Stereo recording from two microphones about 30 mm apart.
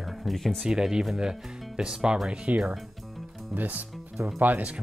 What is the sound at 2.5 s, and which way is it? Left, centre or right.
Speech, right.